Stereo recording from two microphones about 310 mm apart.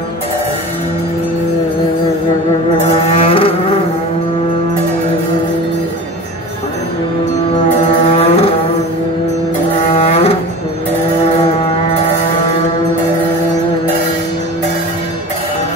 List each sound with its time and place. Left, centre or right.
3.1 s a sound: centre
8.0 s music: centre
9.9 s brass instrument: centre